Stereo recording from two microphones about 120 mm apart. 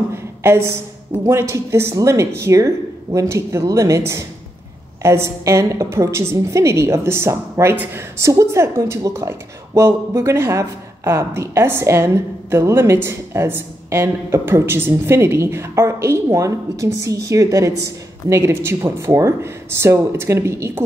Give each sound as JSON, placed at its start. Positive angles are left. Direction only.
{"t": 0.1, "sound": "a sound", "side_deg": -20}
{"t": 1.3, "sound": "a woman's voice", "side_deg": -25}
{"t": 8.2, "sound": "speech", "side_deg": -25}